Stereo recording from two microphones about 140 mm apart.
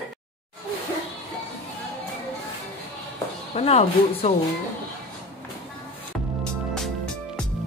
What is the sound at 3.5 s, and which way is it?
Speech, 50° left (ahead or behind).